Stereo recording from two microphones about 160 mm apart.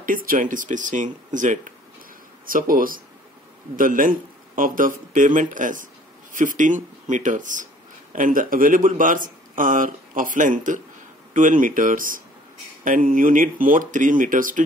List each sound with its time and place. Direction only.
0.0 s speech: 60° right (ahead or behind)